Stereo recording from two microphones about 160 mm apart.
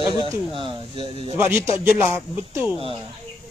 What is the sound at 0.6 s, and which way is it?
Speech, 35° right (ahead or behind).